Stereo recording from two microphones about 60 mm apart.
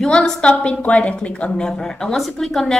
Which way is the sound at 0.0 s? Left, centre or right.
Centre.